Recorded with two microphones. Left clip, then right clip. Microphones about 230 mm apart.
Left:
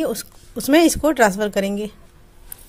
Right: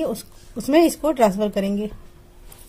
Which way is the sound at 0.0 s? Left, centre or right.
Left.